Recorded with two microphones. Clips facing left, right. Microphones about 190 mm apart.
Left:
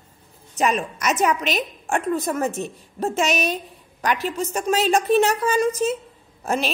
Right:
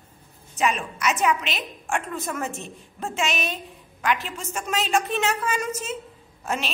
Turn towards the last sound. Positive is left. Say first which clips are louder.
# left 5 dB
turn(degrees=40)  # may be behind; listen again after turning